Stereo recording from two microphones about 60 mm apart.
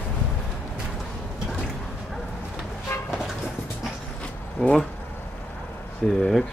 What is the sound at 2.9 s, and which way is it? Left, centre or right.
Vehicle, left.